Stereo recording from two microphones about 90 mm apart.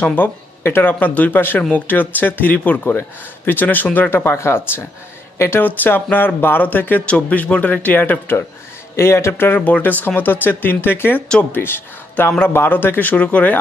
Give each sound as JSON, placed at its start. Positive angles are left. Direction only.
{"t": 0.1, "sound": "speech", "side_deg": 25}